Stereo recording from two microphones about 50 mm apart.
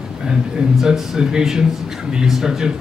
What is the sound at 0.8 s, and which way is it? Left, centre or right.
A man's voice, centre.